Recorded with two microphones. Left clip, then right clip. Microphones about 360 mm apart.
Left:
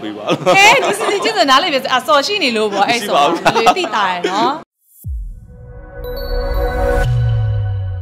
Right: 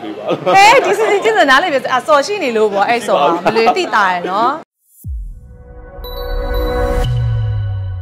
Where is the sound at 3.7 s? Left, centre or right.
Centre.